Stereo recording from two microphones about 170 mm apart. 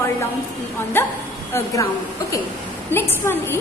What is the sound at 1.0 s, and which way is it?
Speech, 15° left (ahead or behind).